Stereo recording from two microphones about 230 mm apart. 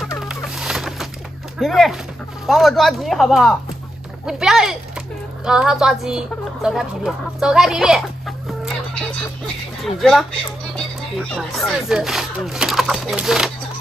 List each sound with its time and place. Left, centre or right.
0.2 s a sound: centre
1.6 s speech: centre
9.9 s speech: centre